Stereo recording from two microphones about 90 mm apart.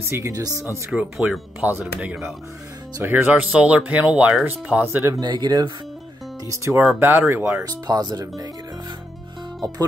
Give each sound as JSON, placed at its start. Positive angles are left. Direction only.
{"t": 0.0, "sound": "speech", "side_deg": -30}
{"t": 0.3, "sound": "speech", "side_deg": -45}
{"t": 1.1, "sound": "speech", "side_deg": -5}
{"t": 1.6, "sound": "speech", "side_deg": -20}
{"t": 5.2, "sound": "speech", "side_deg": -50}
{"t": 6.4, "sound": "speech", "side_deg": -35}
{"t": 7.0, "sound": "speech", "side_deg": -25}
{"t": 7.6, "sound": "speech", "side_deg": -45}